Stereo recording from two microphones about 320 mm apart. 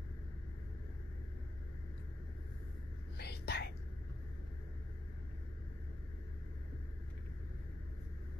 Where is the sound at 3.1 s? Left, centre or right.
Left.